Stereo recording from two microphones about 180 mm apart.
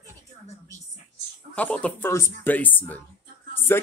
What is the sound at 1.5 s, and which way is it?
Speech, 5° left (ahead or behind).